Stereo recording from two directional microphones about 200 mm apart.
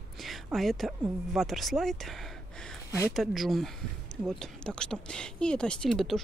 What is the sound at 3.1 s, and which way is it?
Speech, centre (ahead or behind).